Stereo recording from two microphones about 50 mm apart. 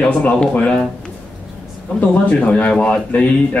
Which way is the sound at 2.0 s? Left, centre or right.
Left.